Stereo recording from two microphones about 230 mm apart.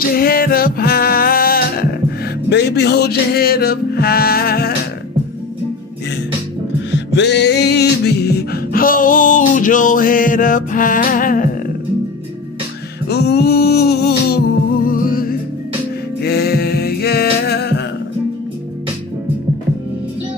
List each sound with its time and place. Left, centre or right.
0.1 s music: left
6.9 s music: left
13.1 s music: left